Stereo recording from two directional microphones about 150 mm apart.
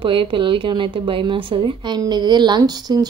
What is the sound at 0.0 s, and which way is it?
A woman's voice, 35° right (ahead or behind).